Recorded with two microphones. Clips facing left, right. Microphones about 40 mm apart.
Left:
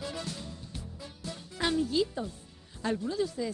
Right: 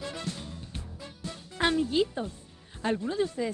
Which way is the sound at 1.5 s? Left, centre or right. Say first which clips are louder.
Right 3 dB; right.